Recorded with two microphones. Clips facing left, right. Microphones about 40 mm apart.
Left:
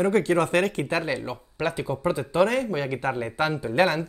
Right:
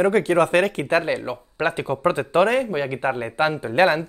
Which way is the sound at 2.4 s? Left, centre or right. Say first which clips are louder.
Right 4 dB; right.